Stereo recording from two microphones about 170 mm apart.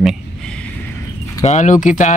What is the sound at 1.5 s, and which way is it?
Speech, 45° left (ahead or behind).